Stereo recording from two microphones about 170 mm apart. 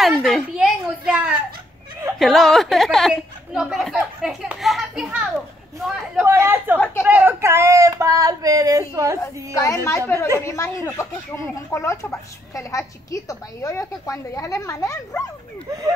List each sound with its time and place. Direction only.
0.0 s a woman's voice: centre (ahead or behind)
6.2 s speech: 15° right (ahead or behind)
9.6 s a woman's voice: 20° left (ahead or behind)
10.1 s speech: 15° right (ahead or behind)
10.4 s a woman's voice: 15° left (ahead or behind)